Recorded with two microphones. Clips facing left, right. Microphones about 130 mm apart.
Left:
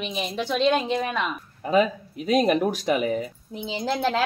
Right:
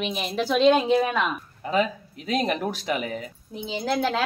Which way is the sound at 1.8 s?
10° left (ahead or behind).